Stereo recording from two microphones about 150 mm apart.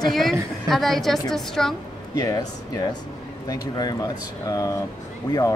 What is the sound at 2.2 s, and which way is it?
Speech, 25° left (ahead or behind).